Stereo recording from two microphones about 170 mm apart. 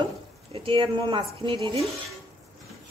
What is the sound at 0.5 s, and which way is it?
A woman's voice, 30° right (ahead or behind).